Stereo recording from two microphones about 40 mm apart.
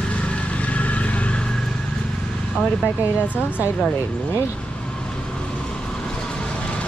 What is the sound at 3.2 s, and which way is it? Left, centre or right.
Speech, left.